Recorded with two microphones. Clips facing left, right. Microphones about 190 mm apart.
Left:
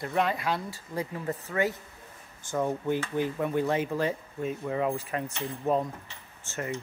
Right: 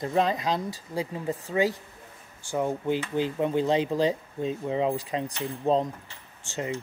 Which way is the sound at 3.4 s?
20° right (ahead or behind).